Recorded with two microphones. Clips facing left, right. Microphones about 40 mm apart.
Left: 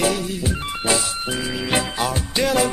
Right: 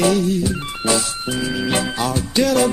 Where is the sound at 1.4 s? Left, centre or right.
Centre.